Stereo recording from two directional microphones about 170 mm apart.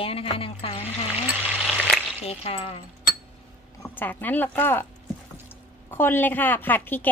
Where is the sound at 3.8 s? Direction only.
10° left (ahead or behind).